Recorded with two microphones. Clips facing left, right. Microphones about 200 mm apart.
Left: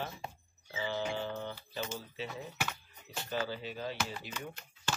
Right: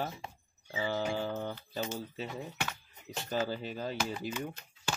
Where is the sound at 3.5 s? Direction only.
45° right (ahead or behind).